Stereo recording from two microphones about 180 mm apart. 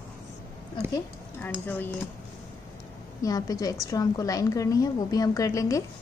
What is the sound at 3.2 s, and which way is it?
A woman's voice, 20° left (ahead or behind).